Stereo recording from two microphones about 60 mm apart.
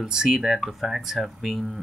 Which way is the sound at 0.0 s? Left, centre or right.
Centre.